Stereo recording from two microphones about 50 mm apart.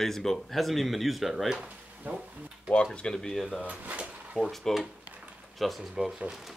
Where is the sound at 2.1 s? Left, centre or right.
Right.